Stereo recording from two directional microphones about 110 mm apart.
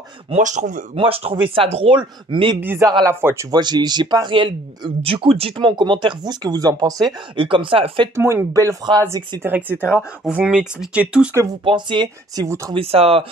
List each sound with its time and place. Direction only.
0.3 s speech: 90° right
0.9 s speech: 60° right (ahead or behind)
2.6 s speech: 20° right (ahead or behind)
3.5 s speech: 40° right (ahead or behind)
7.3 s speech: 50° right (ahead or behind)
8.1 s speech: 25° right (ahead or behind); by 11.2 s 10° right (ahead or behind)
11.6 s speech: 45° right (ahead or behind)
12.4 s speech: 25° right (ahead or behind)
12.7 s speech: 65° right (ahead or behind)